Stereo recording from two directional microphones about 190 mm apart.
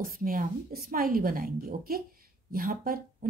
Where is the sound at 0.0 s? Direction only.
45° right (ahead or behind).